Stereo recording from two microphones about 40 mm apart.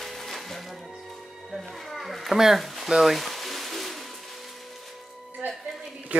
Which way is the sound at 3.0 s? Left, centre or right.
Centre.